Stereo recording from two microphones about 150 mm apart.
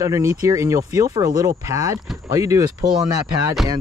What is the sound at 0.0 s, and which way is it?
Speech, 20° right (ahead or behind).